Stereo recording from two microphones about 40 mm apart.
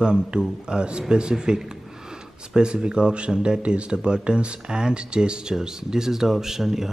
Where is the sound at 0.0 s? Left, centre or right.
Right.